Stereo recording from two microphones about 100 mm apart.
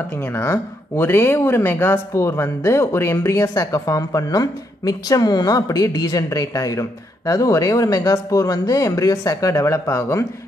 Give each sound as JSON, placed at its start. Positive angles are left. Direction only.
{"t": 0.1, "sound": "speech", "side_deg": 20}